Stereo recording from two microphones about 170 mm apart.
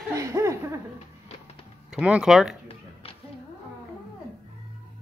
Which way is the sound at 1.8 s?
5° right (ahead or behind).